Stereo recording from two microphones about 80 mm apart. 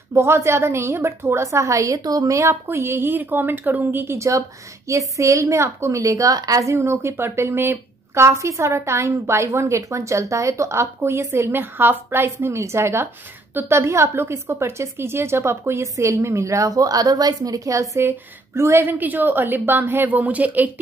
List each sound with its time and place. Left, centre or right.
0.1 s a woman's voice: right
18.9 s a woman's voice: right